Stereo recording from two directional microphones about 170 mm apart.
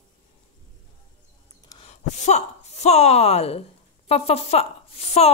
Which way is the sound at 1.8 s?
40° left (ahead or behind).